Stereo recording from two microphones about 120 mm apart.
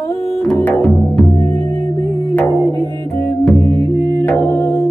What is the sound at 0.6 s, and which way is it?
Music, 15° left (ahead or behind).